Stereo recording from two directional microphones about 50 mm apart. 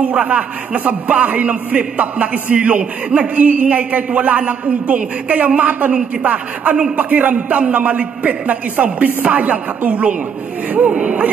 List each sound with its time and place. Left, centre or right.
0.0 s a man's voice: right
11.0 s a man's voice: right